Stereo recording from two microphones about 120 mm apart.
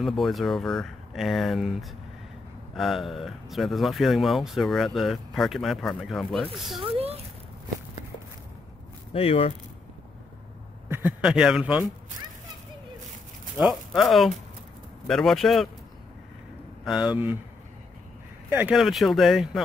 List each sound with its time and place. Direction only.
0.0 s speech: centre (ahead or behind)
6.8 s speech: 55° right (ahead or behind)
9.1 s speech: 55° left (ahead or behind)
10.9 s a sound: 15° right (ahead or behind)
11.2 s speech: 5° right (ahead or behind)
13.6 s speech: 5° right (ahead or behind)
16.8 s speech: 5° right (ahead or behind)
18.5 s speech: 15° right (ahead or behind)
18.8 s speech: centre (ahead or behind)